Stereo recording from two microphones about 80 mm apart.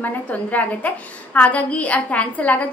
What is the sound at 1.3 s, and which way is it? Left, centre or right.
A woman's voice, centre.